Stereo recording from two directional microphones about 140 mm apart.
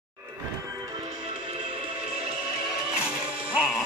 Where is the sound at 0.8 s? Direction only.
30° right (ahead or behind).